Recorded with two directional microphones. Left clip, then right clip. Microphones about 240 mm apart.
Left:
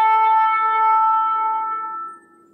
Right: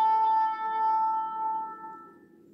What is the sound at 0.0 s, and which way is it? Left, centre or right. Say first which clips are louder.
Music: left 9 dB; left.